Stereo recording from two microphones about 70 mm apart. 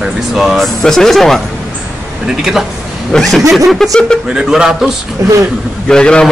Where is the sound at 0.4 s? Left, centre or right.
Centre.